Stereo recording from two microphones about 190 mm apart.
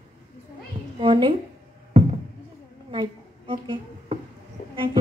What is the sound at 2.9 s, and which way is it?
Music, 25° right (ahead or behind).